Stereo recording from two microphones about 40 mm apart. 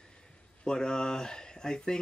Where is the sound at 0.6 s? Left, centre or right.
Centre.